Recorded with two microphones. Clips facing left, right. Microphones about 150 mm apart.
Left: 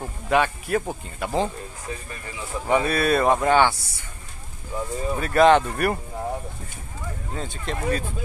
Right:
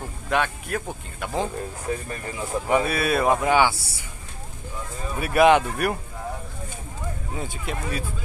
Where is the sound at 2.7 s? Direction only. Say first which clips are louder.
Left 2 dB; 5° right (ahead or behind).